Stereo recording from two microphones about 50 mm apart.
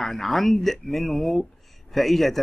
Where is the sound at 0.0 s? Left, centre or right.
Centre.